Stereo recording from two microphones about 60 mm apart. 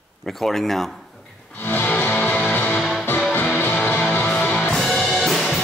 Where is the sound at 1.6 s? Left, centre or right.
Left.